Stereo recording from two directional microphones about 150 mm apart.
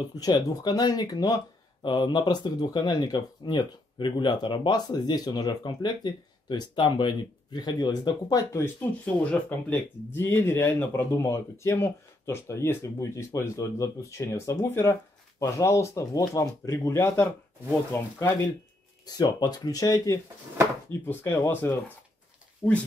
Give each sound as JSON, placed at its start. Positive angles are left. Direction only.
{"t": 0.2, "sound": "speech", "side_deg": 25}
{"t": 9.0, "sound": "speech", "side_deg": 10}
{"t": 19.0, "sound": "speech", "side_deg": 25}
{"t": 22.6, "sound": "speech", "side_deg": -10}